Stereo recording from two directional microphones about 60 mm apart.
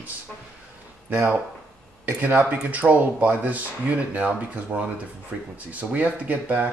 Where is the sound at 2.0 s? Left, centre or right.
Right.